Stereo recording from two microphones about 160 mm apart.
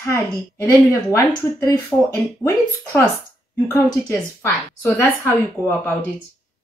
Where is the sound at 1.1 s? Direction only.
20° left (ahead or behind).